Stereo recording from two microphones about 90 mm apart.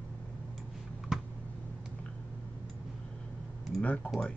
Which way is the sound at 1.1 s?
5° right (ahead or behind).